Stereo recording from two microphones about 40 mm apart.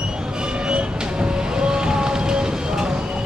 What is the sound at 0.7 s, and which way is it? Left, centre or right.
Vehicle, right.